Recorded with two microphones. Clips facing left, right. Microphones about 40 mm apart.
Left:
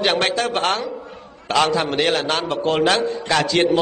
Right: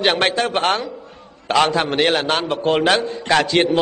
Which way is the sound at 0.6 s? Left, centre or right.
Centre.